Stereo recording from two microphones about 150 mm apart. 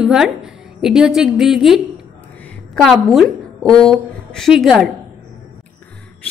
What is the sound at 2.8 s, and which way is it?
A woman's voice, centre (ahead or behind).